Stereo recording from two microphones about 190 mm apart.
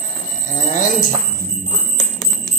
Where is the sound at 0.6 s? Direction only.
40° left (ahead or behind).